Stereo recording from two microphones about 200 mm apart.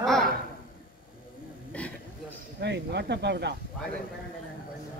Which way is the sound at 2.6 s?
60° right (ahead or behind).